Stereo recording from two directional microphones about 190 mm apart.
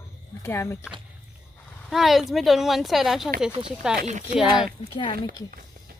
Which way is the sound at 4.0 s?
40° right (ahead or behind).